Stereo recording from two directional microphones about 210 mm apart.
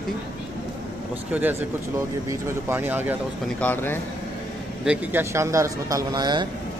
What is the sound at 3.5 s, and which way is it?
Speech, 10° left (ahead or behind).